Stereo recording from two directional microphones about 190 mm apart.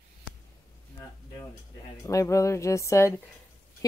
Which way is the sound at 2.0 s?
15° left (ahead or behind).